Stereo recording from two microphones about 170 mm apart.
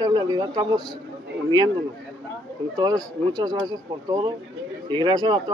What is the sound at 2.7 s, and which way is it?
Speech, 25° right (ahead or behind).